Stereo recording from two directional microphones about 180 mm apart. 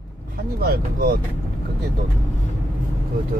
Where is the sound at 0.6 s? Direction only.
55° right (ahead or behind).